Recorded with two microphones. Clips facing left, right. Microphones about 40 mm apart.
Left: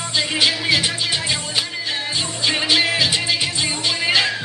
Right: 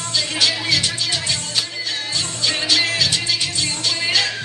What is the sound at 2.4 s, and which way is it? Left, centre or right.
Music, left.